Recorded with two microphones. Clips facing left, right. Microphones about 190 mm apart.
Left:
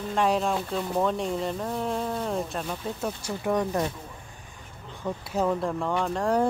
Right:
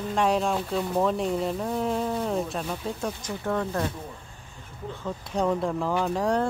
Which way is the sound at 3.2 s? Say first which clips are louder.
Left 2 dB; 10° left (ahead or behind).